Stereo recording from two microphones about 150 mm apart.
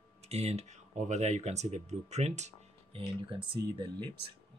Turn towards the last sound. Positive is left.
turn(degrees=-30)  # may be behind; listen again after turning